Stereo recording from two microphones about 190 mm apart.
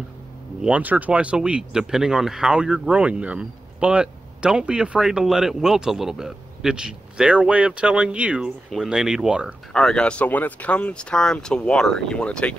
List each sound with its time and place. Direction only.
0.6 s speech: 5° right (ahead or behind)